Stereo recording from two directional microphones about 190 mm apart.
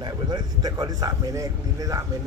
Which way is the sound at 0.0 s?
20° right (ahead or behind).